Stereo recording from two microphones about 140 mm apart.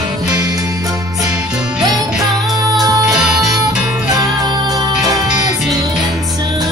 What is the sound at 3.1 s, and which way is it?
Music, 5° right (ahead or behind).